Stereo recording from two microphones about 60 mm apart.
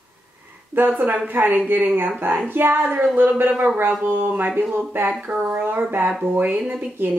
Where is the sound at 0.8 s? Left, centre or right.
Right; by 6.8 s centre.